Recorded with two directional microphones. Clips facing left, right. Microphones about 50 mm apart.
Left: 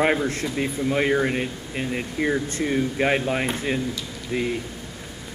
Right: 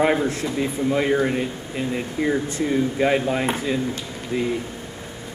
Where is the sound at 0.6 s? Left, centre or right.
Left.